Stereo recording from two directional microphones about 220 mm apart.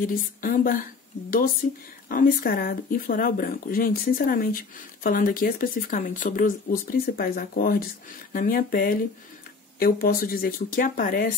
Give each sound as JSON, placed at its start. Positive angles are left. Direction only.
{"t": 0.0, "sound": "speech", "side_deg": 40}
{"t": 2.0, "sound": "speech", "side_deg": 40}